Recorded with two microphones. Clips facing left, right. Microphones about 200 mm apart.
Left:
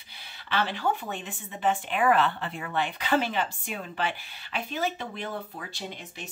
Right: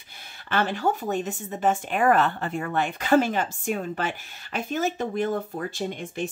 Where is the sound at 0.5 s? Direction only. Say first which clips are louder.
Right 3 dB; 50° right (ahead or behind).